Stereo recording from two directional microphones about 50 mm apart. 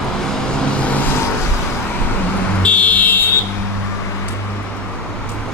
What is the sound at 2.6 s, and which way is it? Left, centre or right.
Fire alarm, left.